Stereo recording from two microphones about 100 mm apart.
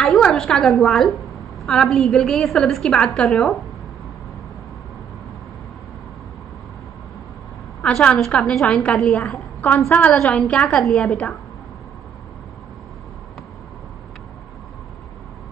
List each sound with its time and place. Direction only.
0.0 s a woman's voice: 5° left (ahead or behind)
7.8 s a woman's voice: 10° left (ahead or behind)
9.6 s a woman's voice: 20° left (ahead or behind)